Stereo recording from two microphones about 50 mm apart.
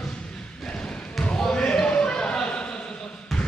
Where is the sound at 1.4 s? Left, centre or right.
Centre.